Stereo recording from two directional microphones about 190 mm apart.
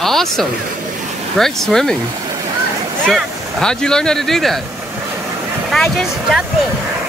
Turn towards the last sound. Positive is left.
turn(degrees=0)  # may be behind; listen again after turning